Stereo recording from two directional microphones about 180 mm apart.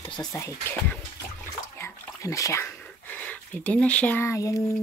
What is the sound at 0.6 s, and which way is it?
Speech, 10° left (ahead or behind).